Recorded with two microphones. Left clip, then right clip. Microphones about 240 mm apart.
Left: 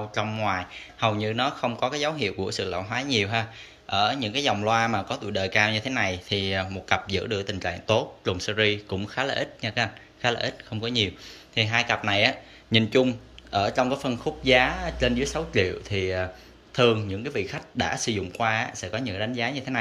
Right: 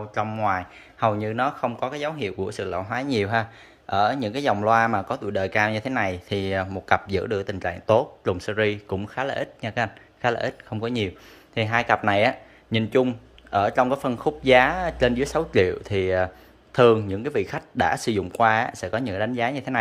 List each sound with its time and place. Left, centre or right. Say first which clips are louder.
0.1 s speech: right 4 dB; centre
12.7 s speech: even; centre